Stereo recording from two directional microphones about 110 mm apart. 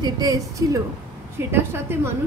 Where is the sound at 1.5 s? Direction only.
20° right (ahead or behind).